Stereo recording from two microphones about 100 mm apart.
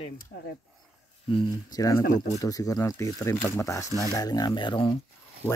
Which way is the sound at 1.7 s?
35° left (ahead or behind).